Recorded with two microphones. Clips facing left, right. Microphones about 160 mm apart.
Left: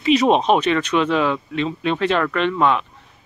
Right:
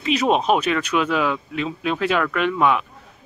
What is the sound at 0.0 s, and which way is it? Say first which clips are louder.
Speech: left 4 dB; centre (ahead or behind).